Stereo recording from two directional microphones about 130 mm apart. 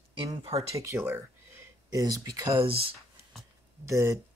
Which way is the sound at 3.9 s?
20° right (ahead or behind).